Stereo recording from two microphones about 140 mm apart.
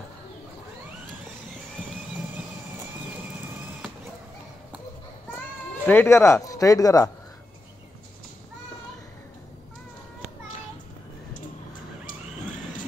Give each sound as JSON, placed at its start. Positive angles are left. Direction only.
{"t": 5.9, "sound": "speech", "side_deg": 15}